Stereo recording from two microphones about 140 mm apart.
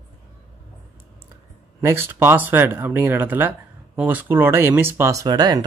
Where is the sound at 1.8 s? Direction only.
15° right (ahead or behind).